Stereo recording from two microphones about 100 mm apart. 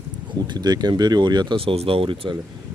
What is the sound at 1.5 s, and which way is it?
Speech, 75° right (ahead or behind).